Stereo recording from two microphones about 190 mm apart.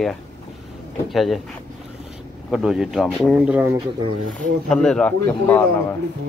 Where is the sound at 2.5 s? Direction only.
5° right (ahead or behind).